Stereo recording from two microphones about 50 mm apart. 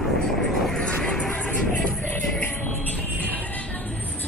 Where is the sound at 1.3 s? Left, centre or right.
Left.